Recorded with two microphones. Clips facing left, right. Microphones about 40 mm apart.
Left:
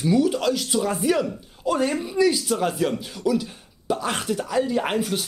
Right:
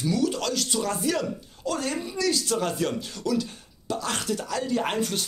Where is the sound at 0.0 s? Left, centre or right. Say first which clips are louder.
Left 5 dB; centre.